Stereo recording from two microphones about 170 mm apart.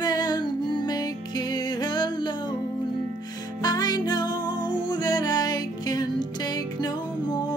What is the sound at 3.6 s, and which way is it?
Music, 25° left (ahead or behind).